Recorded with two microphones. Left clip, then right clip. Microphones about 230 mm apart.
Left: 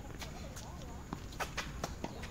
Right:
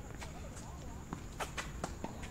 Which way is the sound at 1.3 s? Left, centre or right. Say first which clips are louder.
Left 2 dB; centre.